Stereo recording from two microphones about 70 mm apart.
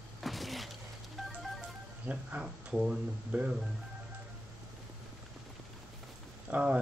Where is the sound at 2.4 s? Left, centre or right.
Centre.